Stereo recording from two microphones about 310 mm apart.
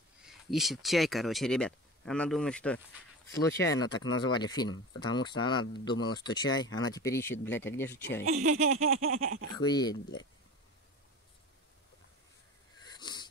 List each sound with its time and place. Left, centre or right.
0.2 s speech: centre
8.3 s speech: right
9.6 s speech: centre
12.8 s wheeze: centre